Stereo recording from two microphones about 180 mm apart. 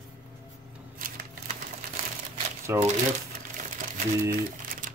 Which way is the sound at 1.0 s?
50° right (ahead or behind).